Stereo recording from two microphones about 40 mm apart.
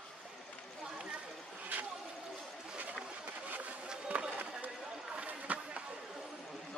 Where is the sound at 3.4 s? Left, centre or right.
Right.